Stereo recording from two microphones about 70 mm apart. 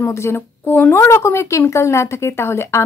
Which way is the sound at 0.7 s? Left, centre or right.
Left.